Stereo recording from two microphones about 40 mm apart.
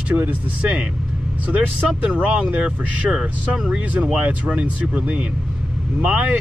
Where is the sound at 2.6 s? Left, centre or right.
Right.